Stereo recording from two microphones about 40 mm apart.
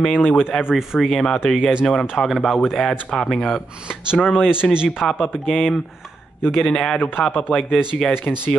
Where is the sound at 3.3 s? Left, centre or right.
Centre.